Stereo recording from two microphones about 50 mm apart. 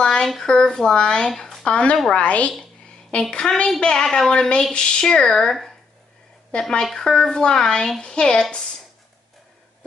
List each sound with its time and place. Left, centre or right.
0.0 s a sound: centre
0.4 s speech: centre
1.3 s speech: centre
1.6 s speech: left
4.3 s speech: centre
6.8 s speech: centre